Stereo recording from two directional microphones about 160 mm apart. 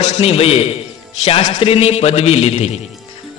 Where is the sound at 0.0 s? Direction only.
40° left (ahead or behind).